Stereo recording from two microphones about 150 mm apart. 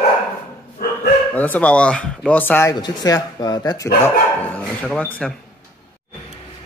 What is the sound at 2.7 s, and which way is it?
Speech, 25° left (ahead or behind).